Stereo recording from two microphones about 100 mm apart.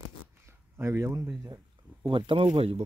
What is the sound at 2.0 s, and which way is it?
Speech, 55° right (ahead or behind).